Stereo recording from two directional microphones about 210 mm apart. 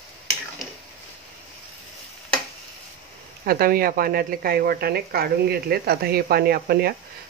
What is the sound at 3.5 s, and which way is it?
Speech, 45° right (ahead or behind).